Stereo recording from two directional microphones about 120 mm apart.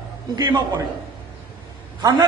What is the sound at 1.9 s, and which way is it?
Speech, 35° right (ahead or behind).